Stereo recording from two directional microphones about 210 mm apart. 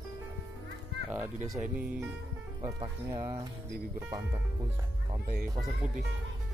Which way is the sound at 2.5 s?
20° right (ahead or behind).